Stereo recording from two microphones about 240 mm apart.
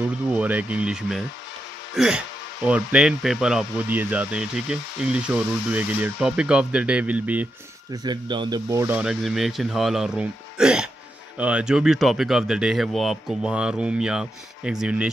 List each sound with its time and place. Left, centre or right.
0.3 s speech: centre
7.9 s speech: centre